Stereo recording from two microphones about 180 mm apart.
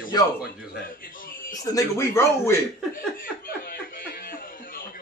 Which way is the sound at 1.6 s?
20° left (ahead or behind).